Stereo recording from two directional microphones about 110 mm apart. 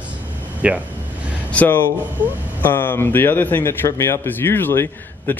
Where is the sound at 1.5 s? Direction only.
15° left (ahead or behind).